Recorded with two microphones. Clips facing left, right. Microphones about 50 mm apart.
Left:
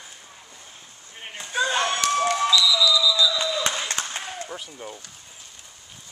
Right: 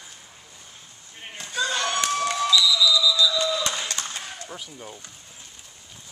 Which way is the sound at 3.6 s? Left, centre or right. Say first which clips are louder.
Left 2 dB; left.